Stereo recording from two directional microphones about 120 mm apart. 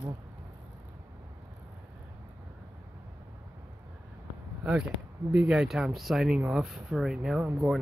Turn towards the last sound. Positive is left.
turn(degrees=-5)  # may be behind; listen again after turning